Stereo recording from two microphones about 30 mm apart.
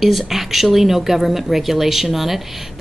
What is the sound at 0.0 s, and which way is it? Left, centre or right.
A woman's voice, centre.